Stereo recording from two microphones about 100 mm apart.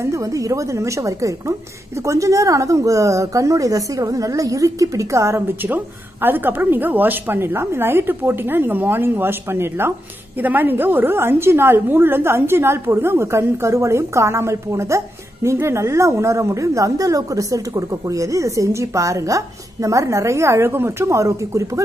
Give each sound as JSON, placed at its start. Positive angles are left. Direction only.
{"t": 0.0, "sound": "a woman's voice", "side_deg": -30}